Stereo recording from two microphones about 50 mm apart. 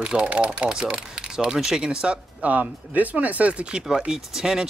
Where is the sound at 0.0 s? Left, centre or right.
Right.